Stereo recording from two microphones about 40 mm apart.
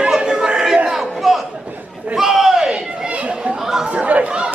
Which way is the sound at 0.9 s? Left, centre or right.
Centre.